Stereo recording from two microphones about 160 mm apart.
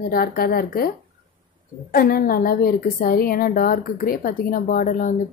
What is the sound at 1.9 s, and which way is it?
A woman's voice, 65° left (ahead or behind).